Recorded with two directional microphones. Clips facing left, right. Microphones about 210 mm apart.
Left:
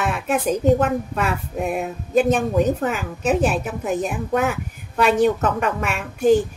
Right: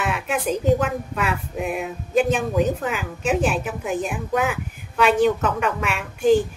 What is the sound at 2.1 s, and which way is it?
A woman's voice, 40° left (ahead or behind).